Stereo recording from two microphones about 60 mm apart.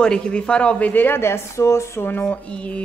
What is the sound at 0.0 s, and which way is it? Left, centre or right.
Speech, centre.